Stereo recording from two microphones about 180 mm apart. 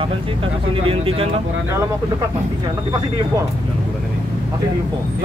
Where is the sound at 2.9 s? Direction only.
20° right (ahead or behind).